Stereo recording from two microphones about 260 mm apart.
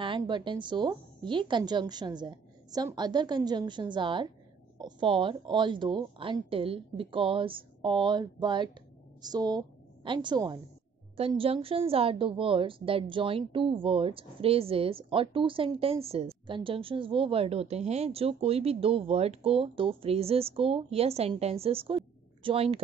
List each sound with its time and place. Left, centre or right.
0.0 s a woman's voice: centre